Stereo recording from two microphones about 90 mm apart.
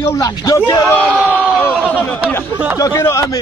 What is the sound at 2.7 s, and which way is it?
Speech, 35° left (ahead or behind).